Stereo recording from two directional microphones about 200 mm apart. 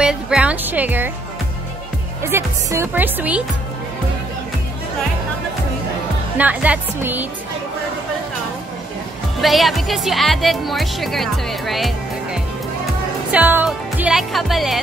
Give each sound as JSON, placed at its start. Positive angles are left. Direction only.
{"t": 0.0, "sound": "speech", "side_deg": -5}
{"t": 2.2, "sound": "a woman's voice", "side_deg": -15}
{"t": 6.3, "sound": "a woman's voice", "side_deg": -5}
{"t": 9.4, "sound": "speech", "side_deg": 0}
{"t": 13.3, "sound": "speech", "side_deg": -10}